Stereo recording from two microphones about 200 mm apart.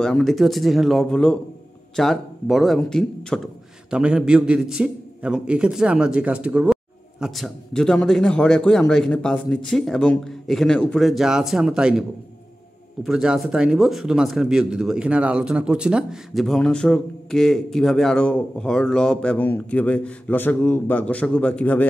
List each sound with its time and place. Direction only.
0.0 s speech: 5° left (ahead or behind)
13.0 s speech: 5° right (ahead or behind)